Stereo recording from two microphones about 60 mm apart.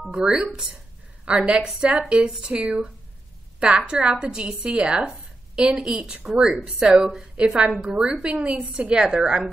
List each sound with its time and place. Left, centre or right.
0.1 s a woman's voice: centre
5.0 s a sound: centre
5.8 s a woman's voice: centre